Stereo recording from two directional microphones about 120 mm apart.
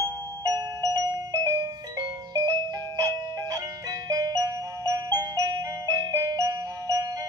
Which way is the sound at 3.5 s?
30° right (ahead or behind).